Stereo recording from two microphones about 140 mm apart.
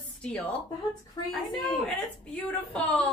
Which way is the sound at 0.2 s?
10° left (ahead or behind).